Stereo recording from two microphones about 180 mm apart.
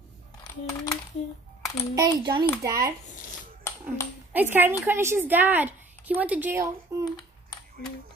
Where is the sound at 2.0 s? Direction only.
25° right (ahead or behind).